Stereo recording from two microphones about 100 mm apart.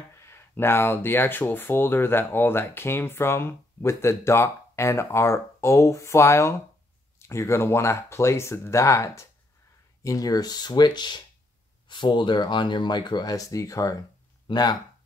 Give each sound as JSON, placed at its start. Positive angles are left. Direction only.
{"t": 0.3, "sound": "speech", "side_deg": 25}
{"t": 14.5, "sound": "speech", "side_deg": 45}